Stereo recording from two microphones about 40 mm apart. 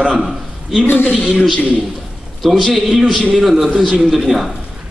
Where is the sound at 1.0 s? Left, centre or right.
Right.